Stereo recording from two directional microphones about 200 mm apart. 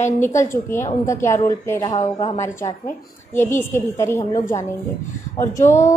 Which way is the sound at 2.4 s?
15° left (ahead or behind).